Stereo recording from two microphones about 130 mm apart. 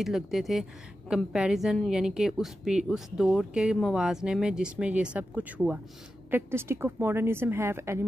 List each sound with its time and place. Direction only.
0.0 s a woman's voice: centre (ahead or behind); by 8.0 s 20° right (ahead or behind)